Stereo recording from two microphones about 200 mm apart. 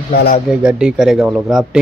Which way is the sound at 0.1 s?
50° left (ahead or behind).